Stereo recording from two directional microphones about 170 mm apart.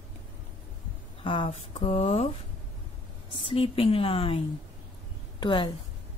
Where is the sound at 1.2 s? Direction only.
30° left (ahead or behind).